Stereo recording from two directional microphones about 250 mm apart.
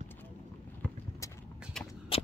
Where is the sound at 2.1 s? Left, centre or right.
Left.